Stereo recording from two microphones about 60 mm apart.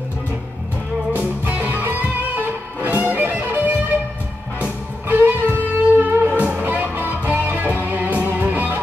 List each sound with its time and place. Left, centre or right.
1.1 s music: right